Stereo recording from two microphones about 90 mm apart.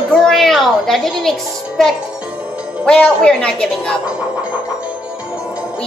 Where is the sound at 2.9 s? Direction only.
10° left (ahead or behind).